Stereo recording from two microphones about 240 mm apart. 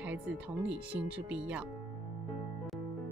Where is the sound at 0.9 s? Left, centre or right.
Centre.